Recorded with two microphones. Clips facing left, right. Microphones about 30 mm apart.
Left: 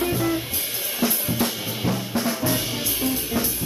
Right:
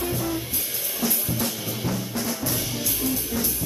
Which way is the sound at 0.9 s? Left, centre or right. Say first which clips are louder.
Left 4 dB; left.